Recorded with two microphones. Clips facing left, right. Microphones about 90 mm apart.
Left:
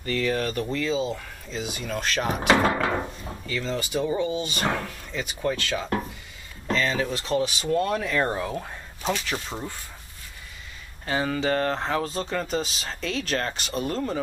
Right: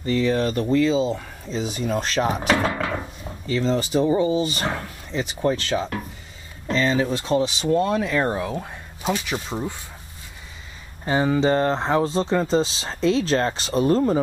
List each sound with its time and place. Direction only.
0.0 s speech: 20° right (ahead or behind)
2.6 s a sound: centre (ahead or behind)
3.4 s speech: 30° right (ahead or behind)
4.7 s speech: 25° right (ahead or behind)
7.6 s speech: 15° right (ahead or behind)
11.1 s speech: 20° right (ahead or behind)